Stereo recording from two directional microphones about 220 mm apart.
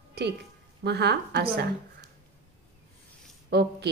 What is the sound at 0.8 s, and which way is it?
Speech, 50° right (ahead or behind).